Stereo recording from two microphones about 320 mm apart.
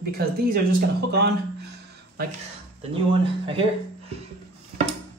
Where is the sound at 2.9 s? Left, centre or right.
Centre.